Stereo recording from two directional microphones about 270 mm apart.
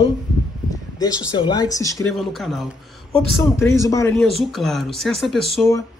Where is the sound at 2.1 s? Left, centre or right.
Centre.